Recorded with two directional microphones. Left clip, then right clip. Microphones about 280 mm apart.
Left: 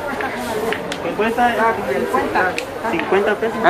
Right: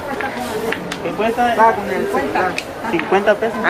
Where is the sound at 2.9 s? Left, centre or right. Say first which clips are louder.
Right 3 dB; centre.